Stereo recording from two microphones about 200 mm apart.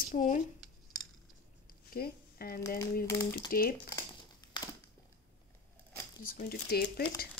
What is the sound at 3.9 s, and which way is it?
Crumpling, 20° left (ahead or behind).